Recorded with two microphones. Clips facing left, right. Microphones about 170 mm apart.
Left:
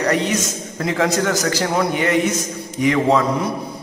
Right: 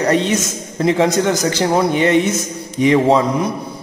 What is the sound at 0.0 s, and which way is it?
A man's voice, 25° right (ahead or behind).